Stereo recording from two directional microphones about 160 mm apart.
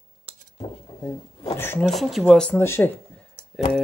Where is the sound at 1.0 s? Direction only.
20° left (ahead or behind).